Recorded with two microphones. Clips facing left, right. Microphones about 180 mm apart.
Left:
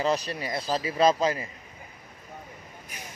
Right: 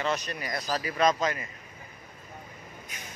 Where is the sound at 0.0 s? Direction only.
35° left (ahead or behind).